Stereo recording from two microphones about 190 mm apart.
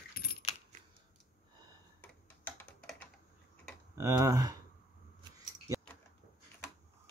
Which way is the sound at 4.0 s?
15° right (ahead or behind).